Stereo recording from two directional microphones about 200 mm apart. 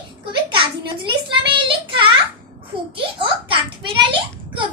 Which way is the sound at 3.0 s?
25° right (ahead or behind).